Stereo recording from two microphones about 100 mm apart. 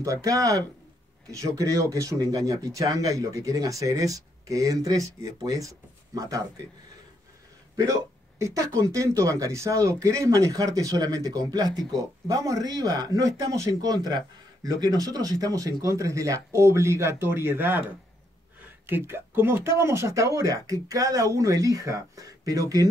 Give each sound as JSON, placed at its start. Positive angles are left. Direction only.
{"t": 0.0, "sound": "speech", "side_deg": -35}
{"t": 7.7, "sound": "speech", "side_deg": -35}
{"t": 18.9, "sound": "speech", "side_deg": -20}